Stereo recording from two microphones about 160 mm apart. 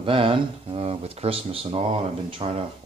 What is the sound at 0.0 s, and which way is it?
Speech, 35° right (ahead or behind).